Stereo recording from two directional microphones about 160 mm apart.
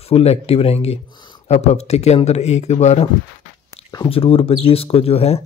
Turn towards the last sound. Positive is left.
turn(degrees=40)  # may be behind; listen again after turning